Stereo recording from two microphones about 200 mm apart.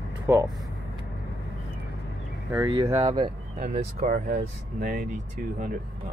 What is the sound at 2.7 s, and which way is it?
Speech, 25° right (ahead or behind).